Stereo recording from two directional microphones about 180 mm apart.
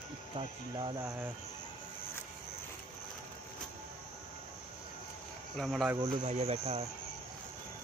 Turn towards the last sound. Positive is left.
turn(degrees=-35)  # may be behind; listen again after turning